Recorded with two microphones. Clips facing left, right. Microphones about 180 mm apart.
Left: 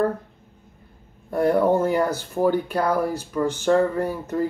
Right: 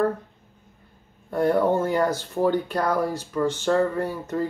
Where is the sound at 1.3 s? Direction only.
10° left (ahead or behind).